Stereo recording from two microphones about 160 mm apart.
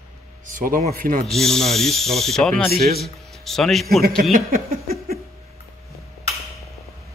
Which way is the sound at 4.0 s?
65° right (ahead or behind).